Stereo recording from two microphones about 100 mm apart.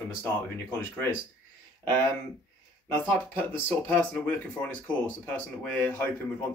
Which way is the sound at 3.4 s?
20° left (ahead or behind).